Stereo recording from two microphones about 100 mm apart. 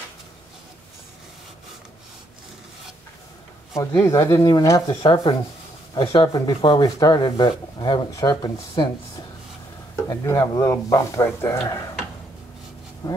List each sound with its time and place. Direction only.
3.7 s speech: 30° left (ahead or behind)
4.4 s speech: 45° left (ahead or behind)
5.0 s speech: 55° left (ahead or behind)
6.3 s speech: 45° left (ahead or behind)
8.1 s speech: 40° left (ahead or behind)
8.4 s speech: 55° left (ahead or behind)
10.0 s speech: 30° left (ahead or behind)
13.0 s speech: 35° left (ahead or behind)